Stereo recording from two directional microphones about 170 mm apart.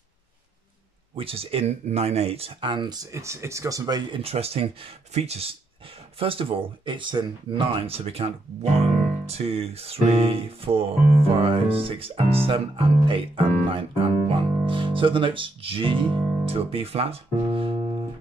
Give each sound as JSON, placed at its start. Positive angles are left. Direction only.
{"t": 1.1, "sound": "speech", "side_deg": -35}